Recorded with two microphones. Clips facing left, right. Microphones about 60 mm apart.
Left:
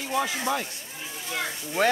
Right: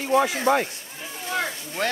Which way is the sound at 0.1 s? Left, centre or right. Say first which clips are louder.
Right 7 dB; right.